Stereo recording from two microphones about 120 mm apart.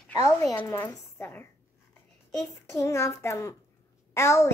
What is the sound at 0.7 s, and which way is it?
Speech, 20° left (ahead or behind).